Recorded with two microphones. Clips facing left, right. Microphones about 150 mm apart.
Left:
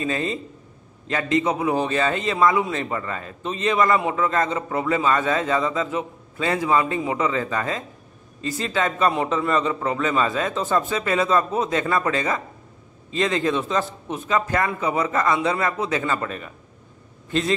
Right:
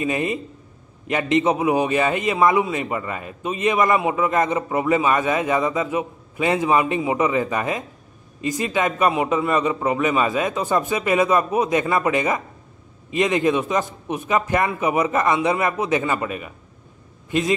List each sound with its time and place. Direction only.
0.0 s a man's voice: 15° right (ahead or behind)